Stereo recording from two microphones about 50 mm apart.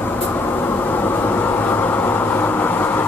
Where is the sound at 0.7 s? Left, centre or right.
Left.